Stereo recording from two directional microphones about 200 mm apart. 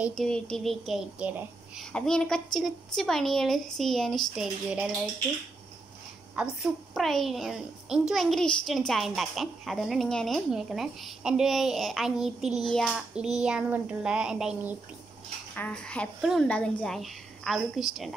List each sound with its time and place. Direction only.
0.0 s a child's voice: centre (ahead or behind)
6.3 s a child's voice: 5° right (ahead or behind)
15.5 s a child's voice: 5° left (ahead or behind)